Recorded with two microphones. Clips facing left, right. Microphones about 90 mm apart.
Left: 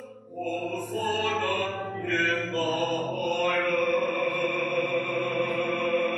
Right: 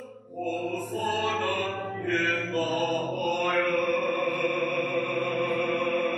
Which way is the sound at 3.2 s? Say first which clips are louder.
Even; 20° right (ahead or behind).